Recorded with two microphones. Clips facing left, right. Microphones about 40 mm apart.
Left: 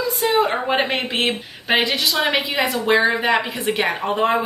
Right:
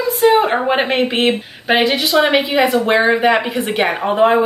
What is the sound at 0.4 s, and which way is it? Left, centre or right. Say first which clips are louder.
A woman's voice: right 4 dB; centre.